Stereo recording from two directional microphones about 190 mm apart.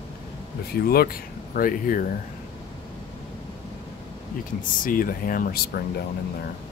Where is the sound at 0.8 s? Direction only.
50° left (ahead or behind).